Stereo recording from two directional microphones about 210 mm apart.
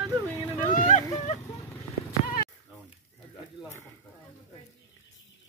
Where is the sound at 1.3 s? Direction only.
35° left (ahead or behind).